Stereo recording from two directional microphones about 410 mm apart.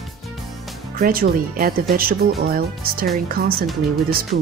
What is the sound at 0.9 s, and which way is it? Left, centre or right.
Speech, right.